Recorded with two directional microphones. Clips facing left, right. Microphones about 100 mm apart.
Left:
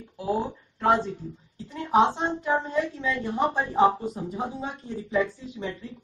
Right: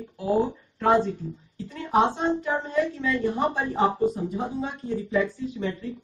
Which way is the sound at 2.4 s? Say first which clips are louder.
Even; 20° left (ahead or behind).